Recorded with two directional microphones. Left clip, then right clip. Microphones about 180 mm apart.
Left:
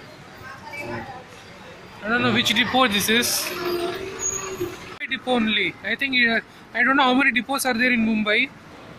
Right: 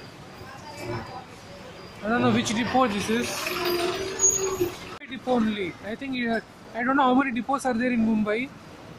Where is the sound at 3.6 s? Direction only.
Centre (ahead or behind).